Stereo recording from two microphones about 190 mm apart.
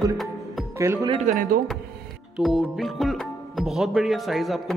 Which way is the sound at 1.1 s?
40° right (ahead or behind).